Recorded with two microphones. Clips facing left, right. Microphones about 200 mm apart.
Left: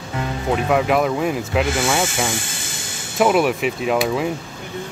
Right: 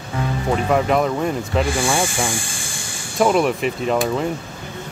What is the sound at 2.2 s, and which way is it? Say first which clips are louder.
Hiss: even; 20° left (ahead or behind).